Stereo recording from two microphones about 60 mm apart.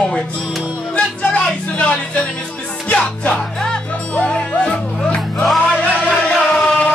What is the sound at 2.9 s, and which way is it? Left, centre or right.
Music, centre.